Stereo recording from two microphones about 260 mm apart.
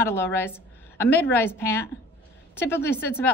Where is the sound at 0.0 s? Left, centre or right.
Centre.